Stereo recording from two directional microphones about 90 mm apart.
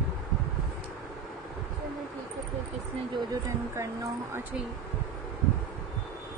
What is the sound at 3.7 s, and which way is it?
Speech, 30° right (ahead or behind).